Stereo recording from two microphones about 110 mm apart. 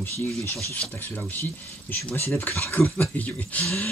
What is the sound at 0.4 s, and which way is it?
Speech, 25° left (ahead or behind).